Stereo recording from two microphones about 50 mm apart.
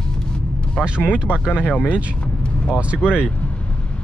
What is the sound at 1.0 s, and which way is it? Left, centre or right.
Speech, left.